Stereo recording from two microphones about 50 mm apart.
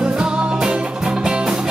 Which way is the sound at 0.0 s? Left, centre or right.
Centre.